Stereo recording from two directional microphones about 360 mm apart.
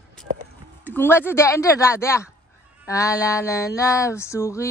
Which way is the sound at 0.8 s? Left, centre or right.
Centre.